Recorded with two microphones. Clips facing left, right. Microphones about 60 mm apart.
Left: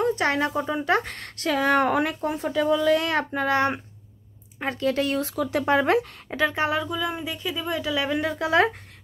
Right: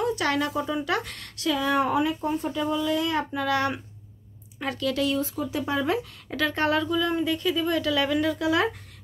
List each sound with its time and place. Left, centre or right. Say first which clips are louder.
0.0 s a sound: left 2 dB; left
0.6 s speech: left 3 dB; left
3.3 s a woman's voice: left 3 dB; left
5.2 s speech: left 4 dB; left
6.3 s a woman's voice: left 1 dB; centre; by 8.6 s left